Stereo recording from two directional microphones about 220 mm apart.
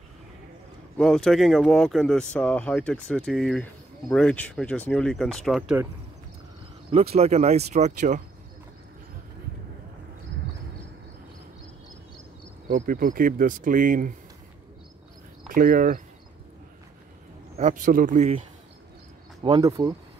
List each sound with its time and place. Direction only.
0.9 s speech: 5° left (ahead or behind)
6.9 s speech: 30° right (ahead or behind)
12.6 s speech: 40° right (ahead or behind)
15.4 s speech: 40° right (ahead or behind)
17.6 s speech: 35° right (ahead or behind)
19.4 s speech: 15° right (ahead or behind)